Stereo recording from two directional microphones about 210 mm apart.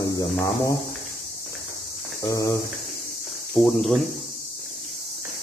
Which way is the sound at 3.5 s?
5° left (ahead or behind).